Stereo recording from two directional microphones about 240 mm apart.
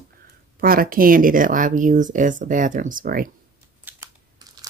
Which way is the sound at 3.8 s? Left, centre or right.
Centre.